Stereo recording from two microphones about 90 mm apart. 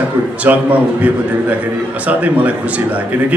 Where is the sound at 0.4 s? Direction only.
15° right (ahead or behind).